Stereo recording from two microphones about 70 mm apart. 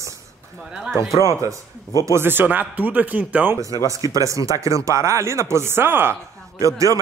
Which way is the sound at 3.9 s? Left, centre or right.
Right.